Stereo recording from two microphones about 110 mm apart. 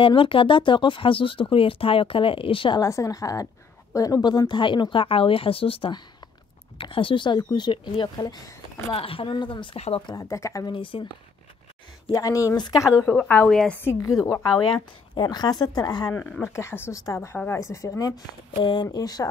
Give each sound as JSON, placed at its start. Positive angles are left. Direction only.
{"t": 0.0, "sound": "speech", "side_deg": 50}
{"t": 2.8, "sound": "speech", "side_deg": 30}
{"t": 8.9, "sound": "speech", "side_deg": 55}
{"t": 9.8, "sound": "speech", "side_deg": 65}
{"t": 10.2, "sound": "speech", "side_deg": 30}
{"t": 10.7, "sound": "speech", "side_deg": 50}
{"t": 12.1, "sound": "speech", "side_deg": 30}
{"t": 13.5, "sound": "a woman's voice", "side_deg": 5}
{"t": 13.7, "sound": "speech", "side_deg": 25}
{"t": 14.7, "sound": "speech", "side_deg": 40}
{"t": 16.1, "sound": "speech", "side_deg": 15}